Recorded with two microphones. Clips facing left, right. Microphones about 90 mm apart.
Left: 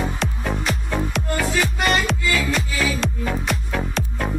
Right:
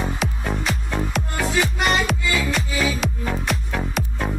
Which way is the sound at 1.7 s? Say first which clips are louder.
Even; 20° right (ahead or behind).